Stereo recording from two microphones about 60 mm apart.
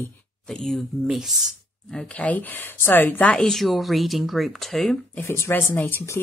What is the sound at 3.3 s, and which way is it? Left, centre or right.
Speech, centre.